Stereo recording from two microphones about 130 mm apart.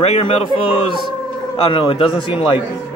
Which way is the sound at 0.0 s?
50° left (ahead or behind).